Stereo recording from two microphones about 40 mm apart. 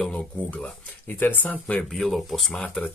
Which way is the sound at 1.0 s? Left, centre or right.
Left.